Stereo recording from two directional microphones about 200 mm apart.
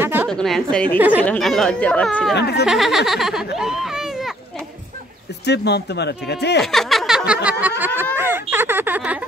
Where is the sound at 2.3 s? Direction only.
55° left (ahead or behind).